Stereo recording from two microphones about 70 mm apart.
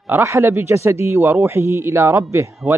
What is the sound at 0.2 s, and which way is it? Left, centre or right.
Speech, right.